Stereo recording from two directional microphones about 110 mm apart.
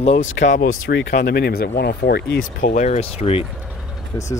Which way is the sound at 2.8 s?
80° left.